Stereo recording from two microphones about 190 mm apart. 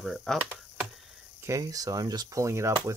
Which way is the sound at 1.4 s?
15° right (ahead or behind).